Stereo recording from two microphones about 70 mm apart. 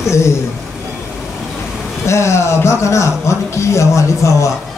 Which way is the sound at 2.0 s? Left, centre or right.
Left.